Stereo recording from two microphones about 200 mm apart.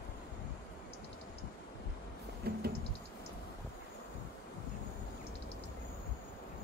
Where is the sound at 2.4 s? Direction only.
50° right (ahead or behind).